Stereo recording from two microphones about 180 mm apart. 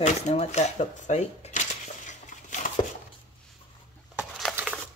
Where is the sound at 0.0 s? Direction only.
40° left (ahead or behind).